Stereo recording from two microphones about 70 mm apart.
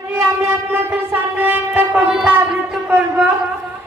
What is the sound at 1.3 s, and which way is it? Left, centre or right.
Train, right.